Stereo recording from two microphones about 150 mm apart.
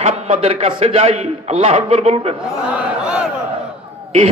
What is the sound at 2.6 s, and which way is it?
Crowd, 10° right (ahead or behind).